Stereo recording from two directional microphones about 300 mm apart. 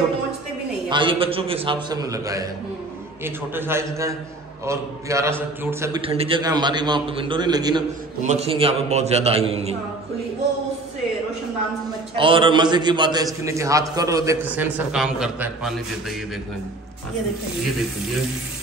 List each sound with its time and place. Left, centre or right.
0.8 s a man's voice: centre
12.2 s a man's voice: centre